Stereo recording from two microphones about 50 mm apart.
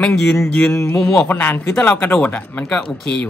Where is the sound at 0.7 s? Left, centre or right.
Left.